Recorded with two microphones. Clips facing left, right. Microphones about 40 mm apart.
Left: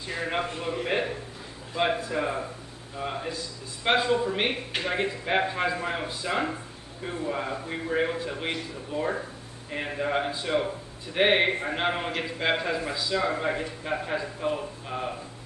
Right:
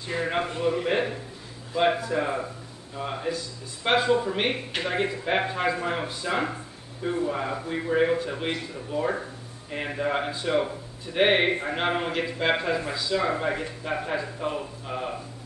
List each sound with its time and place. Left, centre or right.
0.3 s a man's voice: centre